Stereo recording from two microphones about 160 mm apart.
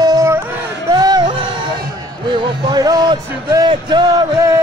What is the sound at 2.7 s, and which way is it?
Music, 25° right (ahead or behind).